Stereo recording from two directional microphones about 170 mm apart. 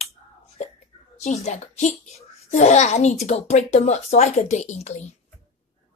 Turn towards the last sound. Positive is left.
turn(degrees=45)  # may be behind; listen again after turning